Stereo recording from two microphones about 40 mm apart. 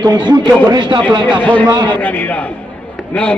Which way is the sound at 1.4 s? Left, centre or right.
Left.